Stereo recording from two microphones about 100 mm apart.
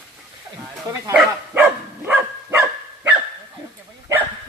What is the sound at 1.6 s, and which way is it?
Dog, 15° right (ahead or behind).